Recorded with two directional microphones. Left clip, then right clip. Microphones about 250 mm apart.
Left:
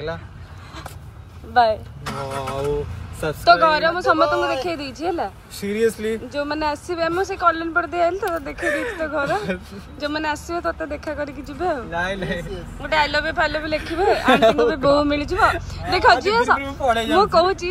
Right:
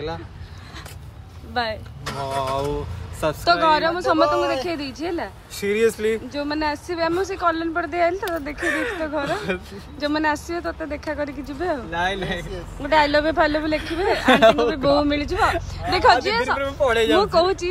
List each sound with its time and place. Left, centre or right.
1.5 s speech: centre
3.6 s speech: centre
9.9 s speech: centre
11.9 s speech: centre
12.8 s speech: centre
14.6 s speech: centre
15.3 s speech: centre
15.9 s speech: centre